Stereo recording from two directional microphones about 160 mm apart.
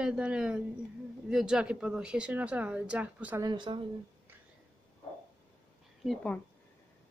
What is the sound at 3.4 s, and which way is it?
Speech, 30° right (ahead or behind).